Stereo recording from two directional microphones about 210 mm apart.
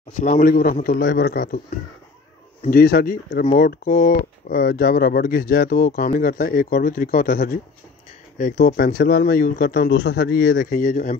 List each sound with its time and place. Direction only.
0.1 s speech: 40° left (ahead or behind)
2.6 s speech: 45° left (ahead or behind)